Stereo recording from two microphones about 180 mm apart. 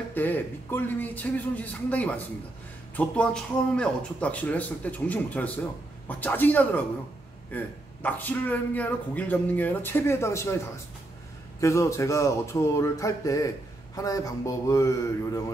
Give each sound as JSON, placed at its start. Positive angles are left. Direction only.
{"t": 0.1, "sound": "a man's voice", "side_deg": 10}
{"t": 11.6, "sound": "a man's voice", "side_deg": 15}